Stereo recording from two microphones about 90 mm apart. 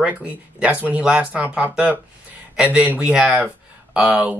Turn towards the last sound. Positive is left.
turn(degrees=-15)  # may be behind; listen again after turning